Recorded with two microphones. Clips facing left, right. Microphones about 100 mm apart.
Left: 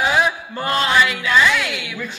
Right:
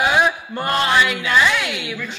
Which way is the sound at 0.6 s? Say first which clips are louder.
Left 1 dB; 20° right (ahead or behind).